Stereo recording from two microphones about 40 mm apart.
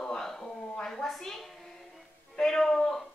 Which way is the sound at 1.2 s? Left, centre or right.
Centre.